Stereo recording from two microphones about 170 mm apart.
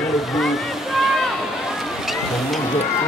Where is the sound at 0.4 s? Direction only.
Centre (ahead or behind).